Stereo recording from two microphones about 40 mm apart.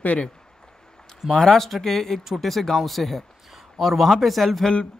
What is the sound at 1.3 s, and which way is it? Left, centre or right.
Speech, centre.